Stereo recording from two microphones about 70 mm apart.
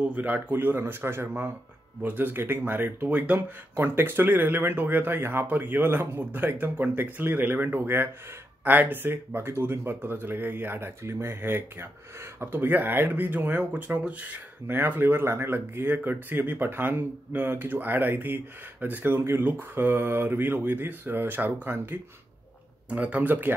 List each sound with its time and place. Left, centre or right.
0.0 s speech: right